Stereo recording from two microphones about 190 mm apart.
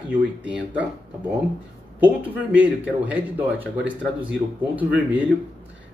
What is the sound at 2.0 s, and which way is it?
Speech, 10° right (ahead or behind).